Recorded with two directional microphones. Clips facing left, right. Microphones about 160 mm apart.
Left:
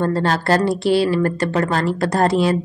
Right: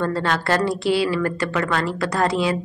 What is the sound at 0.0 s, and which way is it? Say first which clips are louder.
A woman's voice: left 3 dB; 35° left (ahead or behind).